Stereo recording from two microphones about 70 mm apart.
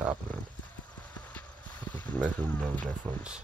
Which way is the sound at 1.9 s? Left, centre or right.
Centre.